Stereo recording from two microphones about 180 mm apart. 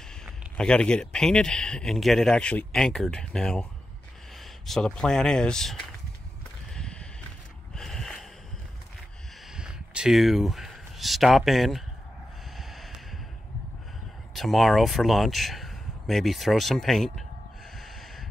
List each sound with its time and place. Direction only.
0.1 s speech: 5° left (ahead or behind)
6.7 s a sound: 5° left (ahead or behind)
7.7 s snort: 5° left (ahead or behind)
9.5 s speech: 5° right (ahead or behind)
12.5 s snort: centre (ahead or behind)
14.3 s speech: centre (ahead or behind)
17.7 s snort: centre (ahead or behind)